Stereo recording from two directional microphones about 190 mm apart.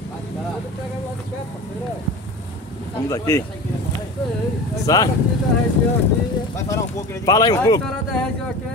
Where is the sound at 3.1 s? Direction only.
15° left (ahead or behind).